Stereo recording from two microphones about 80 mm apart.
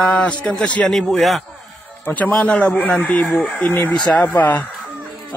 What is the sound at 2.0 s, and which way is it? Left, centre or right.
A man's voice, centre.